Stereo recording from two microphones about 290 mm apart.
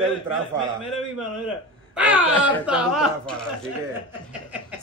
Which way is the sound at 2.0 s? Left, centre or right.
Centre.